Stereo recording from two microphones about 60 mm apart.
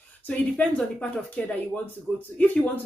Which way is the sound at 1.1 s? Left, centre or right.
Left.